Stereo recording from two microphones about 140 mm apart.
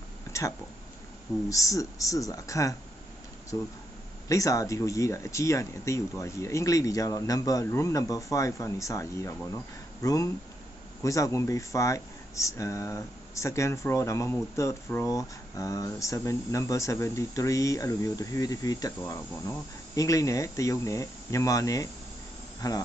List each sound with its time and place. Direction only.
1.5 s speech: 25° left (ahead or behind)